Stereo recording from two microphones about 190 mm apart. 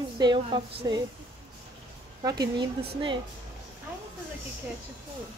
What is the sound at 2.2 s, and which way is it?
A woman's voice, 20° right (ahead or behind).